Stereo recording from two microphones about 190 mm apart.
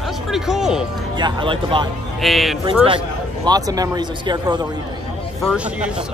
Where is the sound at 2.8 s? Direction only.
25° right (ahead or behind).